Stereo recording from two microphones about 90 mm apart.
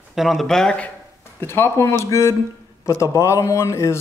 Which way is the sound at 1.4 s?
25° left (ahead or behind).